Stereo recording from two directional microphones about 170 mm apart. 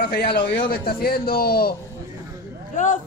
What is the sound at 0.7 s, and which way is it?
A man's voice, 60° left (ahead or behind).